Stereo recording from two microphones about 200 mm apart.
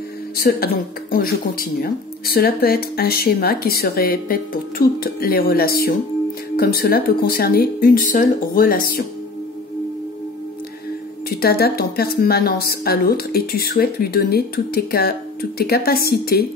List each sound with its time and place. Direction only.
0.4 s speech: 50° left (ahead or behind)
11.2 s speech: 50° left (ahead or behind)